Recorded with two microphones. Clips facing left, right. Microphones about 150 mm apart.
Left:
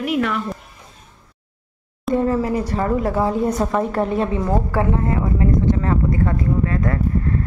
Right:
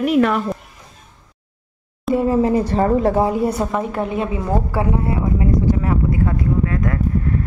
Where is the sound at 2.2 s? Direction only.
20° right (ahead or behind).